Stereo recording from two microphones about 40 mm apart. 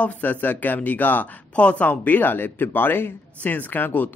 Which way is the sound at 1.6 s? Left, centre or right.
Left.